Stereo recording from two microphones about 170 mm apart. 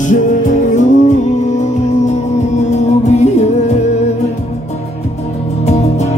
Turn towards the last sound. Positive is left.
turn(degrees=40)  # may be behind; listen again after turning